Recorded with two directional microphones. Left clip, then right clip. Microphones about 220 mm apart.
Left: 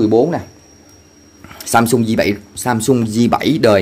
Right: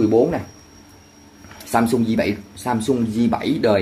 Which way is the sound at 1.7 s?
35° left (ahead or behind).